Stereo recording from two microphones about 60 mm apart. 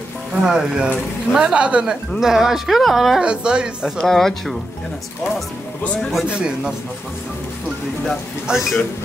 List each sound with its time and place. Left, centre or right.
0.4 s speech: centre
2.1 s speech: centre
3.2 s speech: centre
4.0 s speech: centre
6.2 s speech: centre
8.5 s speech: centre